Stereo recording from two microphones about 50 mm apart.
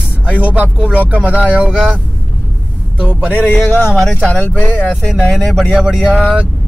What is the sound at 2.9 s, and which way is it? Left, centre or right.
Speech, centre.